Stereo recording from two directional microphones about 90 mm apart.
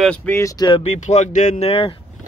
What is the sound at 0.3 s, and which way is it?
Speech, 35° left (ahead or behind).